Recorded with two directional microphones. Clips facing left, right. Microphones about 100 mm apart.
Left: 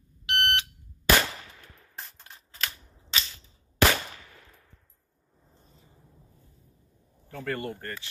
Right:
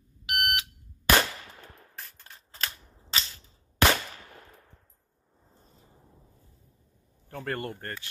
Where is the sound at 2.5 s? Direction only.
35° right (ahead or behind).